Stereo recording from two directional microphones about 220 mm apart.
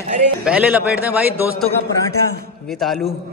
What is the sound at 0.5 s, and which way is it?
A man's voice, 5° right (ahead or behind).